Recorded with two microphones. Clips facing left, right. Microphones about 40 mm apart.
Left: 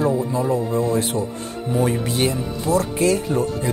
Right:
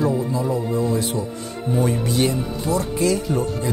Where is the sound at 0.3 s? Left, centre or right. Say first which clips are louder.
Left 2 dB; left.